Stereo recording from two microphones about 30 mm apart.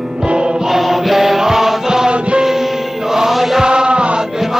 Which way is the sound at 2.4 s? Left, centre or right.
Centre.